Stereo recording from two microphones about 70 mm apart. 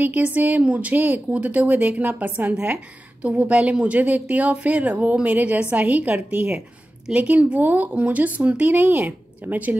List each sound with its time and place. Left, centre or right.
0.0 s speech: right